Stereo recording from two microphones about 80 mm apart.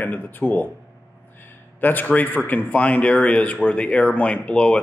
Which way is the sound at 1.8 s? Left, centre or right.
Left.